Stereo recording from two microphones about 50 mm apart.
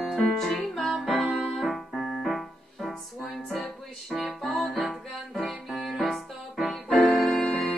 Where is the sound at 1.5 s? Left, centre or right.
Centre.